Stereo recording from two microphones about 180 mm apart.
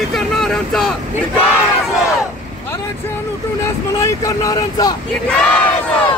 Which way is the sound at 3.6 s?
15° left (ahead or behind).